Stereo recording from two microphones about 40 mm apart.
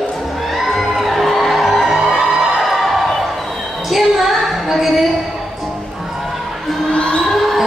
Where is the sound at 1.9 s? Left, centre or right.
Centre.